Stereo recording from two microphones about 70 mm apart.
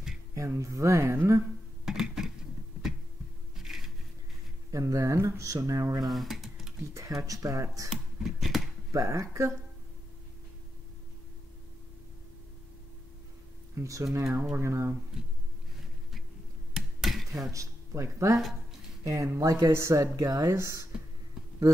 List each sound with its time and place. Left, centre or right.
0.6 s speech: right
1.9 s a sound: centre
3.5 s music: centre
4.6 s speech: right
6.0 s a sound: centre
6.9 s speech: right
7.9 s a sound: centre
8.9 s speech: right
13.7 s speech: right
16.7 s a sound: centre
17.5 s speech: right
20.5 s speech: right